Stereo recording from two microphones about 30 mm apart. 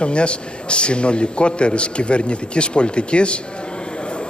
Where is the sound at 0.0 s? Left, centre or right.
Left.